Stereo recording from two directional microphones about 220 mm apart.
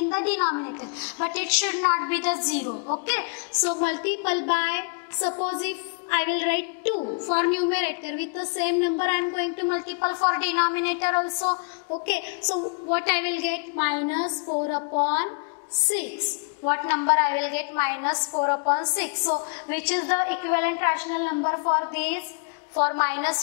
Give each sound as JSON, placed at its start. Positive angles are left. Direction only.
{"t": 0.1, "sound": "a sound", "side_deg": 10}
{"t": 0.5, "sound": "a woman's voice", "side_deg": 20}
{"t": 0.9, "sound": "a woman's voice", "side_deg": 10}
{"t": 7.0, "sound": "a woman's voice", "side_deg": 30}
{"t": 7.3, "sound": "a woman's voice", "side_deg": 10}
{"t": 11.1, "sound": "a woman's voice", "side_deg": 20}
{"t": 12.4, "sound": "a woman's voice", "side_deg": 5}
{"t": 14.2, "sound": "a woman's voice", "side_deg": 30}
{"t": 15.0, "sound": "a woman's voice", "side_deg": 10}
{"t": 16.6, "sound": "a woman's voice", "side_deg": 15}
{"t": 19.7, "sound": "a woman's voice", "side_deg": 10}
{"t": 21.4, "sound": "a woman's voice", "side_deg": 25}
{"t": 21.9, "sound": "a woman's voice", "side_deg": 10}